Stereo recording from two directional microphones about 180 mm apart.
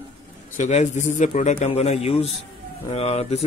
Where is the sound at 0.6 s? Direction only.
40° left (ahead or behind).